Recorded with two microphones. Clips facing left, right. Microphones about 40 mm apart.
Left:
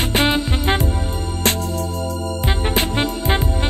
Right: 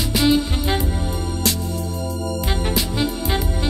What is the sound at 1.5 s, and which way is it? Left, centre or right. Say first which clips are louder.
Music: left 3 dB; left.